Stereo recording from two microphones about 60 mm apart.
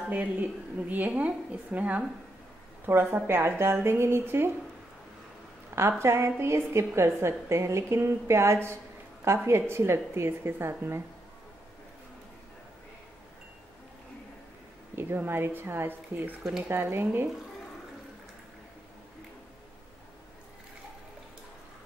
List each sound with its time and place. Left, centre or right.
0.1 s a woman's voice: right
5.8 s a woman's voice: right
15.0 s a woman's voice: right